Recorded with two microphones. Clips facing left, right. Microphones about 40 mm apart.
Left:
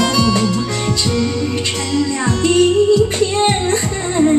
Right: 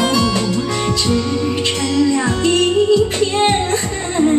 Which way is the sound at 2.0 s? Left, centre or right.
Centre.